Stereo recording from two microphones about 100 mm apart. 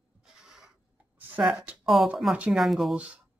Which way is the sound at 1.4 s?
Centre (ahead or behind).